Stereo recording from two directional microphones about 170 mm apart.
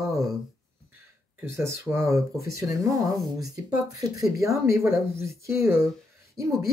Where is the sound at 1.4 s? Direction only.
15° right (ahead or behind).